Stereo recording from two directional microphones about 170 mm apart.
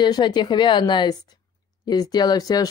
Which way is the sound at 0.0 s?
25° left (ahead or behind).